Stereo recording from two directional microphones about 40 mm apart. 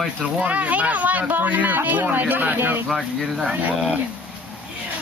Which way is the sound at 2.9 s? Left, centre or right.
Centre.